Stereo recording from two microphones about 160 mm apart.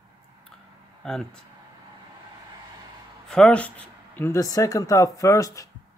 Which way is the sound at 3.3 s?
5° left (ahead or behind).